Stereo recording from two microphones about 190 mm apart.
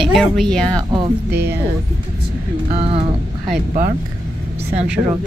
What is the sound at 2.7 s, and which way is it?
Speech, 30° right (ahead or behind).